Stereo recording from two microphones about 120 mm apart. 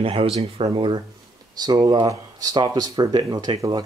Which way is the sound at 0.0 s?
50° right (ahead or behind).